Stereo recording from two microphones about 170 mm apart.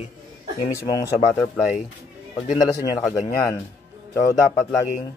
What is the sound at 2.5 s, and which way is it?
Speech, 25° left (ahead or behind).